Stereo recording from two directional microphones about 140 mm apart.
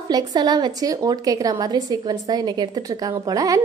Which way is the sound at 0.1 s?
30° right (ahead or behind).